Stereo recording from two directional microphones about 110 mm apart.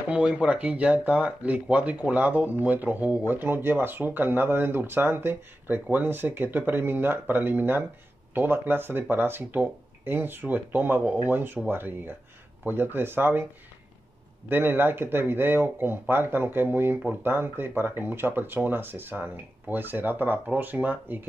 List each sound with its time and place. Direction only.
0.1 s speech: 10° right (ahead or behind)
14.5 s speech: 20° right (ahead or behind)